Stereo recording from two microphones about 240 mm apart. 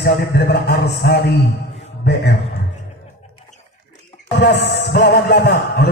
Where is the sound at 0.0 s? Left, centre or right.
Left.